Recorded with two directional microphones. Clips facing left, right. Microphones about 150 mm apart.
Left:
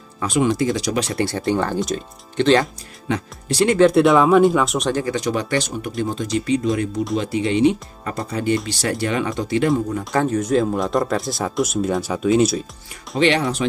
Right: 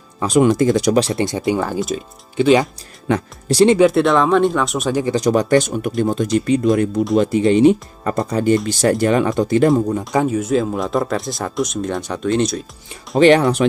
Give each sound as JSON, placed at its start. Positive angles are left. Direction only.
{"t": 0.4, "sound": "speech", "side_deg": -50}
{"t": 0.9, "sound": "speech", "side_deg": -30}
{"t": 1.2, "sound": "speech", "side_deg": -15}
{"t": 3.1, "sound": "speech", "side_deg": -40}
{"t": 3.9, "sound": "speech", "side_deg": 0}
{"t": 5.0, "sound": "speech", "side_deg": -40}
{"t": 10.1, "sound": "speech", "side_deg": -5}
{"t": 13.2, "sound": "speech", "side_deg": -50}